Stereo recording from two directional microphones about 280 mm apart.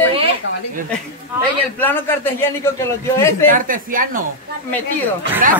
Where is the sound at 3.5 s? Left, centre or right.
Right.